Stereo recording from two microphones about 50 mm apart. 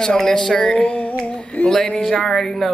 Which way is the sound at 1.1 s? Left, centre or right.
Left.